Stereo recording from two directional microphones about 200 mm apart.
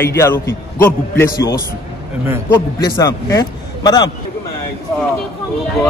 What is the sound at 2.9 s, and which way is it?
A man's voice, 15° left (ahead or behind).